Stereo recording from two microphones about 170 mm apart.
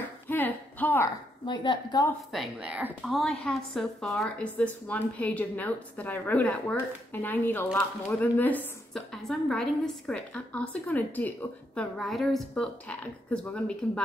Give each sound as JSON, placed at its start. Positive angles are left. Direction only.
{"t": 0.3, "sound": "a sound", "side_deg": 10}
{"t": 1.4, "sound": "a woman's voice", "side_deg": 30}
{"t": 2.3, "sound": "a woman's voice", "side_deg": -5}